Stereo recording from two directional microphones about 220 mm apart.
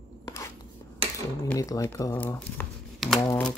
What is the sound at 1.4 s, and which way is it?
Speech, 15° left (ahead or behind).